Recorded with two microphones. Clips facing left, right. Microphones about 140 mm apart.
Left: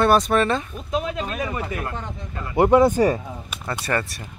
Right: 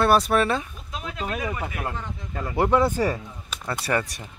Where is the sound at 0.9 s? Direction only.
20° left (ahead or behind).